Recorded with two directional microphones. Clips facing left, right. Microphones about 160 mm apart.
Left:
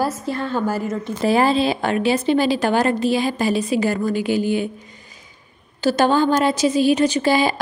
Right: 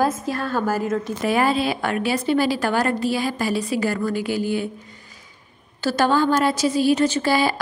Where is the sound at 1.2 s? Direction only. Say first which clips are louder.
Left 4 dB; 30° left (ahead or behind).